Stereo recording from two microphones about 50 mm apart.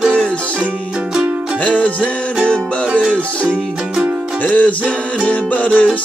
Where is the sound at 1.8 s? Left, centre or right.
Left.